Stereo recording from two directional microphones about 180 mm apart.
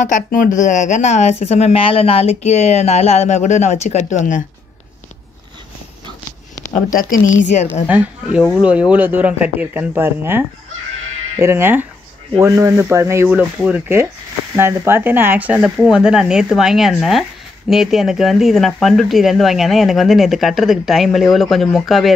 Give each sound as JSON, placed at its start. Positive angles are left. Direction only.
{"t": 0.0, "sound": "speech", "side_deg": 45}
{"t": 7.9, "sound": "speech", "side_deg": -5}